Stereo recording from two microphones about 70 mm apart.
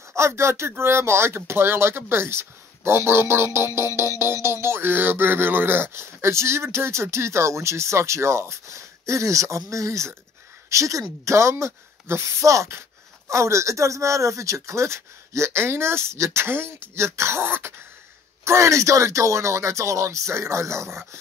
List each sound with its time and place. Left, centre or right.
0.1 s speech: right
18.4 s speech: right